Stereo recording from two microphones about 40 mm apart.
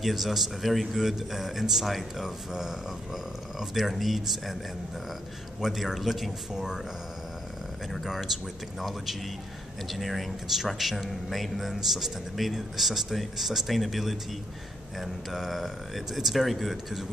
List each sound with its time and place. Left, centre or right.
0.0 s a man's voice: centre
5.6 s speech: centre
7.9 s a man's voice: centre